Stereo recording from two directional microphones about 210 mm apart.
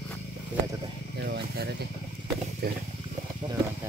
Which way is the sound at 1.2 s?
50° right (ahead or behind).